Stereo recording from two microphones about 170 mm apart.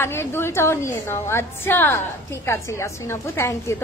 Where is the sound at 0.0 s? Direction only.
15° left (ahead or behind).